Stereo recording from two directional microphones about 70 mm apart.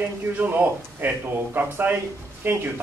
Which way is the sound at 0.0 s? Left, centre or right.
Right.